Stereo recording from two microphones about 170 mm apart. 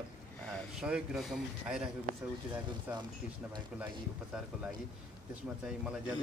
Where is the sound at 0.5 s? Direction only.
5° right (ahead or behind).